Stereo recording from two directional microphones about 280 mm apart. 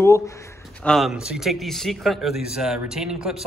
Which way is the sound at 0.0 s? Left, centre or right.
Centre.